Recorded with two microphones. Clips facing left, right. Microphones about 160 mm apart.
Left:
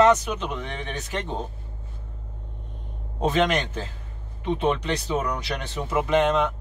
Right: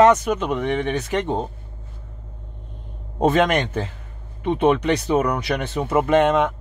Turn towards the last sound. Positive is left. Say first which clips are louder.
# right 4 dB
turn(degrees=-55)  # may be behind; listen again after turning